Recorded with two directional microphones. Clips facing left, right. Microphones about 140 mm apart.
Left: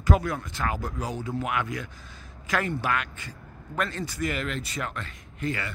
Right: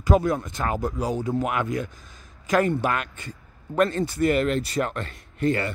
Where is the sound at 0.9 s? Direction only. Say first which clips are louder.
Right 6 dB; 40° right (ahead or behind).